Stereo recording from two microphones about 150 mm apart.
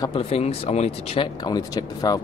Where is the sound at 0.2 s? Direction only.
40° left (ahead or behind).